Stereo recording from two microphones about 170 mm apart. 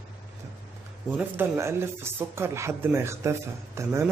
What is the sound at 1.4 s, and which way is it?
Speech, 15° right (ahead or behind).